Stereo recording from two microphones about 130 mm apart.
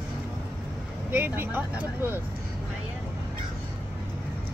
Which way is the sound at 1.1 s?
15° right (ahead or behind).